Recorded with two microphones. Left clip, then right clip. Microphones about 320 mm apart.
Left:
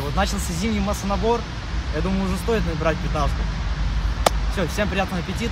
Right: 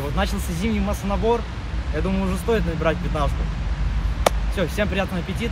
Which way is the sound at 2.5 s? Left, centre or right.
Centre.